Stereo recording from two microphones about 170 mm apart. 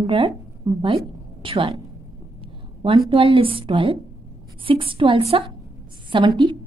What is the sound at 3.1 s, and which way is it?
A woman's voice, 35° right (ahead or behind).